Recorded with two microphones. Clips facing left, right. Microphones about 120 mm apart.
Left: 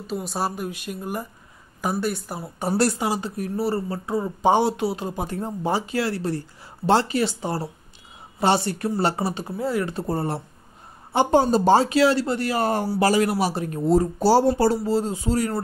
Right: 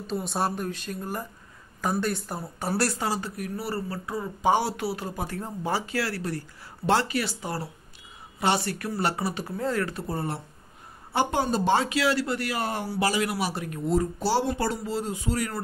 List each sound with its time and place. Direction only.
0.0 s speech: 5° left (ahead or behind)
2.6 s speech: 20° left (ahead or behind)
9.6 s speech: 10° left (ahead or behind)
10.0 s speech: 35° left (ahead or behind)